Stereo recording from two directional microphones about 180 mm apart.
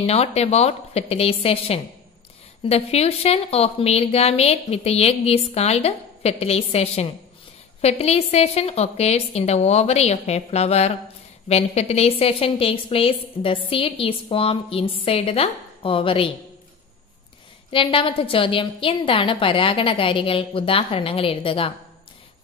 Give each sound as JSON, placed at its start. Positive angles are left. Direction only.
{"t": 0.0, "sound": "a woman's voice", "side_deg": 35}
{"t": 17.6, "sound": "a woman's voice", "side_deg": 30}